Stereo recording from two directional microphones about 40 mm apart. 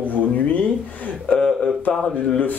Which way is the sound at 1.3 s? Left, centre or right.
Centre.